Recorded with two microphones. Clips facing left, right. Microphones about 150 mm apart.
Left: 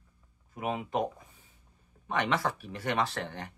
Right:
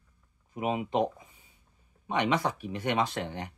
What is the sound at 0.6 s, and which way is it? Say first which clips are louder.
Speech: right 3 dB; 15° right (ahead or behind).